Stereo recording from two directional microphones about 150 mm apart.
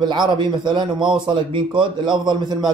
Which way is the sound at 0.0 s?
30° right (ahead or behind).